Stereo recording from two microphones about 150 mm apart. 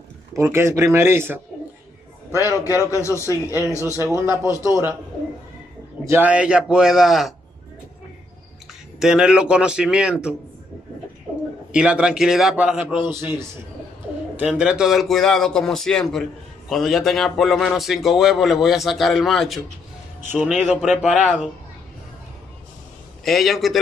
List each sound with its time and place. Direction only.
0.4 s a man's voice: 20° right (ahead or behind)
2.3 s a man's voice: 20° left (ahead or behind)
4.1 s a man's voice: 20° right (ahead or behind)
6.0 s speech: 10° right (ahead or behind)
9.0 s speech: 5° right (ahead or behind)
11.7 s a man's voice: 5° right (ahead or behind)
20.6 s speech: centre (ahead or behind)
23.2 s speech: centre (ahead or behind)